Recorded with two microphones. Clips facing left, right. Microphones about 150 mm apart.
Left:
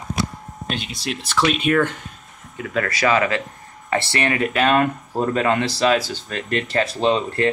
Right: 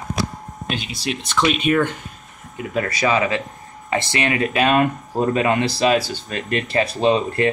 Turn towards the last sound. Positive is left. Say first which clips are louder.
# right 1 dB
turn(degrees=-15)  # may be behind; listen again after turning